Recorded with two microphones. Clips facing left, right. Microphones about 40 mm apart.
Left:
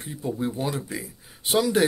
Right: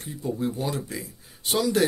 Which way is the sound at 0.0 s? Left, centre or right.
Left.